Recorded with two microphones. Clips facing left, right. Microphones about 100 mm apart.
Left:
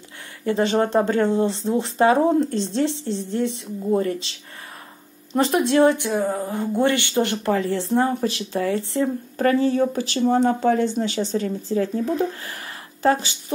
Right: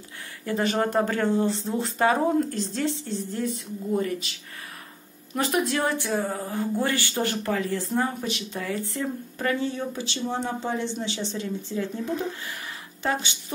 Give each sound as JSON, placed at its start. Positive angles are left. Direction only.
{"t": 0.5, "sound": "speech", "side_deg": 25}
{"t": 5.3, "sound": "speech", "side_deg": 25}
{"t": 9.4, "sound": "speech", "side_deg": 40}
{"t": 13.0, "sound": "speech", "side_deg": 35}